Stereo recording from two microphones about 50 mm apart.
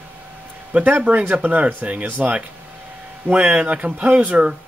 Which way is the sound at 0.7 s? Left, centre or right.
Right.